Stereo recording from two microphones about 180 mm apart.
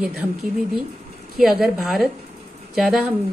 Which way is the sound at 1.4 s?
Centre (ahead or behind).